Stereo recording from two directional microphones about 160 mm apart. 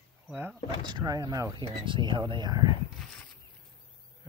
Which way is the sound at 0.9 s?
25° right (ahead or behind).